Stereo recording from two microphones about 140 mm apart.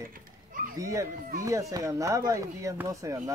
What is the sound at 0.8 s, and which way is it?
Speech, 20° right (ahead or behind).